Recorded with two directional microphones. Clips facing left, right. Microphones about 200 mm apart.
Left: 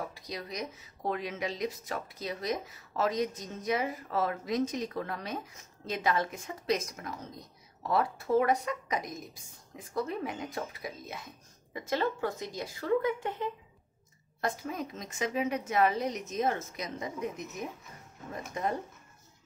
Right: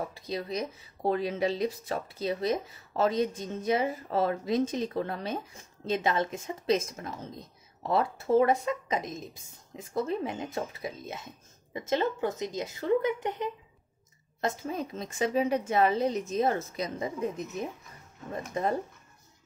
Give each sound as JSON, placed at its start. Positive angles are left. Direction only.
{"t": 0.1, "sound": "a woman's voice", "side_deg": -30}